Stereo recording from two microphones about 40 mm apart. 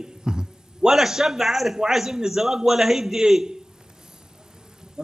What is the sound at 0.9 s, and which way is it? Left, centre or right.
A man's voice, centre.